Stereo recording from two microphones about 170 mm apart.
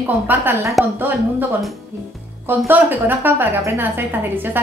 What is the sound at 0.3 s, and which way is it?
Speech, 10° right (ahead or behind).